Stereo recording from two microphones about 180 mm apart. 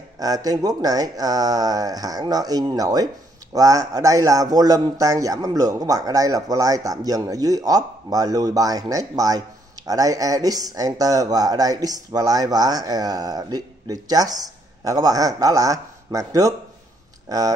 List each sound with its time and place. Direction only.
0.2 s speech: 20° right (ahead or behind)